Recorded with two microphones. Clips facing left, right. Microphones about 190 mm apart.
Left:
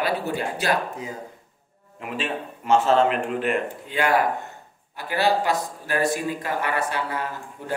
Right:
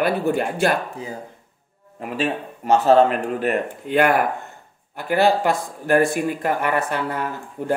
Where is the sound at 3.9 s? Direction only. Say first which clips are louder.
Right 4 dB; 55° right (ahead or behind).